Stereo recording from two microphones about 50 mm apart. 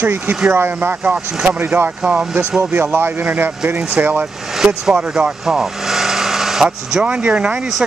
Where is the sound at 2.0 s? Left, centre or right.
Right.